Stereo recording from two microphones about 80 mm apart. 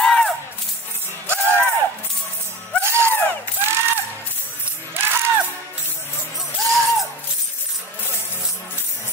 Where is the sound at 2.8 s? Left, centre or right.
Right.